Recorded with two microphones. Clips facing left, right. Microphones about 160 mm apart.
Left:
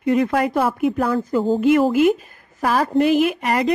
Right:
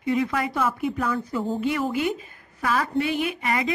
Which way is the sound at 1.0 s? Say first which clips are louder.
Left 7 dB; 35° left (ahead or behind).